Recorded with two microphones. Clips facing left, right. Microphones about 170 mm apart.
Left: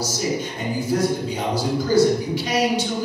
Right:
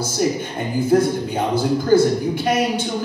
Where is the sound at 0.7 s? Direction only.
55° right (ahead or behind).